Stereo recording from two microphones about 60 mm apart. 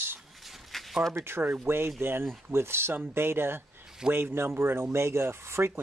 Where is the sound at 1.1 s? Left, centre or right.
Right.